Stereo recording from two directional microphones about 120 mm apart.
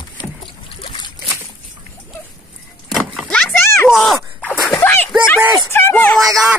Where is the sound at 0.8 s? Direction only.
45° left (ahead or behind).